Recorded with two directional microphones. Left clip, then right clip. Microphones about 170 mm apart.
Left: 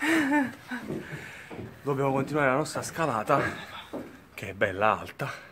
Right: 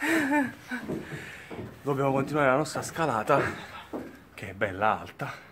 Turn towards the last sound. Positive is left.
turn(degrees=55)  # may be behind; listen again after turning